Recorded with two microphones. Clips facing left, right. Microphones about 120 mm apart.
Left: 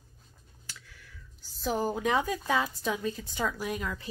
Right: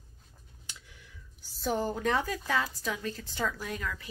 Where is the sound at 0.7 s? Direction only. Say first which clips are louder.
Left 1 dB; 20° right (ahead or behind).